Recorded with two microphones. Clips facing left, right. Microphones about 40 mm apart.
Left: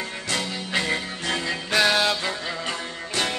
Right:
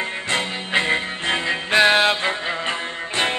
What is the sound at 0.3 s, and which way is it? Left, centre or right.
Music, right.